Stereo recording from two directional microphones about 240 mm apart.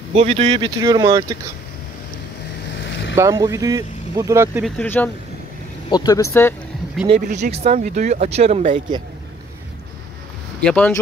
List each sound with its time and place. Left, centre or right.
0.1 s speech: right
3.2 s speech: centre
4.6 s speech: centre
7.2 s speech: right
10.6 s speech: centre